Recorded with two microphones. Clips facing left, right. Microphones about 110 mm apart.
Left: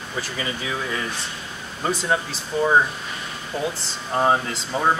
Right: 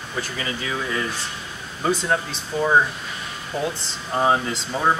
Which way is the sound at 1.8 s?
5° left (ahead or behind).